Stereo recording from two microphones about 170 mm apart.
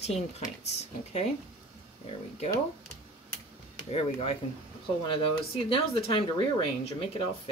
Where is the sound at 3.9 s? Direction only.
35° left (ahead or behind).